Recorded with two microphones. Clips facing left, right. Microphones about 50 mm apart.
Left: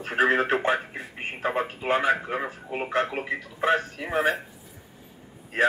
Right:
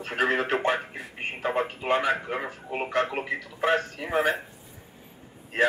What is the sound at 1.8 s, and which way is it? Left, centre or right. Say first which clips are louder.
Speech: left 2 dB; left.